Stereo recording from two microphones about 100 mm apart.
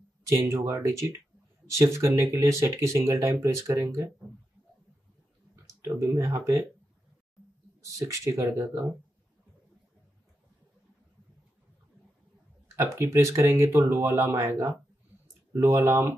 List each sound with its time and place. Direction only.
0.3 s speech: 30° right (ahead or behind)
5.9 s speech: 30° right (ahead or behind)
7.8 s speech: 30° right (ahead or behind)
12.7 s speech: 25° right (ahead or behind)